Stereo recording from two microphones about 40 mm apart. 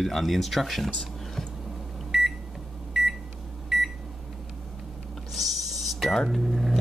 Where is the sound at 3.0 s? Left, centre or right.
Centre.